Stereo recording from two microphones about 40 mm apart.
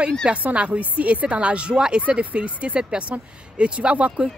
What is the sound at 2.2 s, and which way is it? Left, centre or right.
Speech, right.